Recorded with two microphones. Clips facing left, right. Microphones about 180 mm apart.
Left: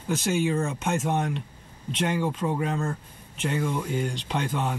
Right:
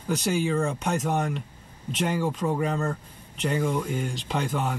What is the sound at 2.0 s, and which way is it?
Speech, 10° right (ahead or behind).